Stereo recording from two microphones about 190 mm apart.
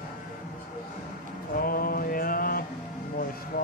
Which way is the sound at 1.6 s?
50° left (ahead or behind).